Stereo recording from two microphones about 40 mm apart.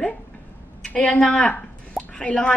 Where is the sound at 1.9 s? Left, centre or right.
Left.